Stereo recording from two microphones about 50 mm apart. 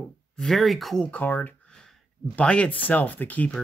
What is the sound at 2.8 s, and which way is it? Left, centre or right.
Speech, left.